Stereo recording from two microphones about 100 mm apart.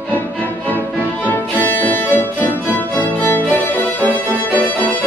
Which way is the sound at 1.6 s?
15° left (ahead or behind).